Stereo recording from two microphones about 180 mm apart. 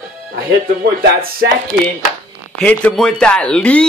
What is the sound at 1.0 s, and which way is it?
Speech, 55° right (ahead or behind).